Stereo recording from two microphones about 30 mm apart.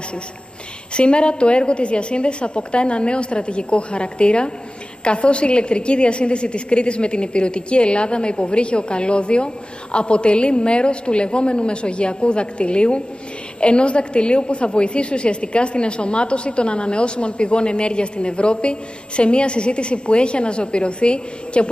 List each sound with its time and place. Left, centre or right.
0.9 s a woman's voice: left